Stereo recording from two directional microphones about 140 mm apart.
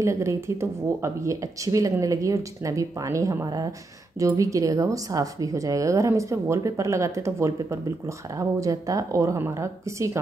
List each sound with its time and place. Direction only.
0.0 s speech: 20° right (ahead or behind)